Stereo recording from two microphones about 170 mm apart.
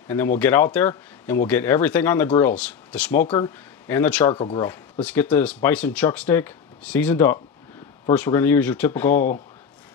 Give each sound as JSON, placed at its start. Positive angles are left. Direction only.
{"t": 0.1, "sound": "speech", "side_deg": 10}
{"t": 4.3, "sound": "speech", "side_deg": 30}
{"t": 4.6, "sound": "speech", "side_deg": 10}